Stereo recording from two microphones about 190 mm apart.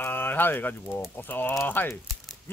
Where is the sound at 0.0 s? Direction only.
10° left (ahead or behind).